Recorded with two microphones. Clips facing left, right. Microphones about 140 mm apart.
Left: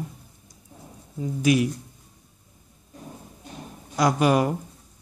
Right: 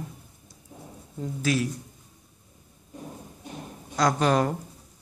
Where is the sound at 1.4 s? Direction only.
15° left (ahead or behind).